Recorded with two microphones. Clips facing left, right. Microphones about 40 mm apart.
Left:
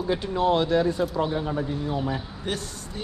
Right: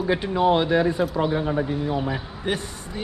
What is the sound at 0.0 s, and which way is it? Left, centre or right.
A man's voice, right.